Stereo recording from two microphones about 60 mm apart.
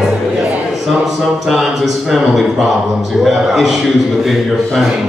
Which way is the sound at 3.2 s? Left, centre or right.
Centre.